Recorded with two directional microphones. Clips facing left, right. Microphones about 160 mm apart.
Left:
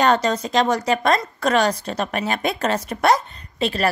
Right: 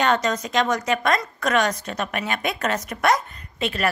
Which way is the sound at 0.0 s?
35° left (ahead or behind).